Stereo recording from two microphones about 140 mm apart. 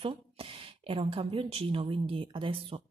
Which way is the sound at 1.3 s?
40° right (ahead or behind).